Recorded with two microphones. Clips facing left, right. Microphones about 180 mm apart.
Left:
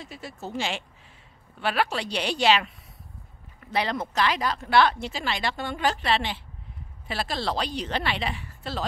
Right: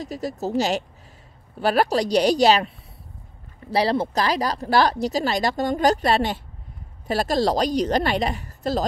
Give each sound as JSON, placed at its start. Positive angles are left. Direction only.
{"t": 0.0, "sound": "speech", "side_deg": -40}
{"t": 3.7, "sound": "speech", "side_deg": -35}